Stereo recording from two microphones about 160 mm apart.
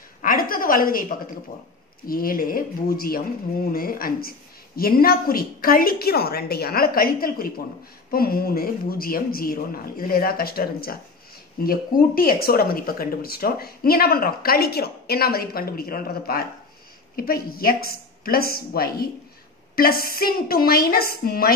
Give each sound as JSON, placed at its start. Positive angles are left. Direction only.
{"t": 0.2, "sound": "a woman's voice", "side_deg": 60}